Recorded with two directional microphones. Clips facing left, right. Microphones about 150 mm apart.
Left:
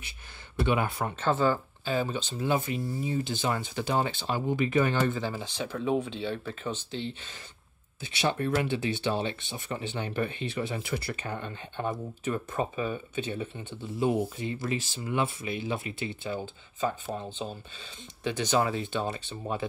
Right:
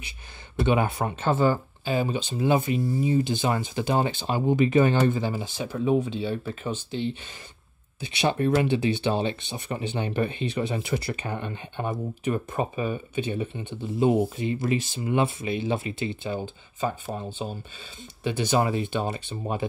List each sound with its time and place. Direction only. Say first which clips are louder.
0.6 s speech: right 4 dB; 20° right (ahead or behind)
1.0 s speech: right 1 dB; 10° right (ahead or behind)
17.3 s speech: right 3 dB; 10° right (ahead or behind)